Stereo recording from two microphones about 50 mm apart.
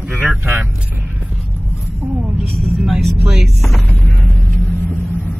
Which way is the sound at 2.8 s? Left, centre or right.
Centre.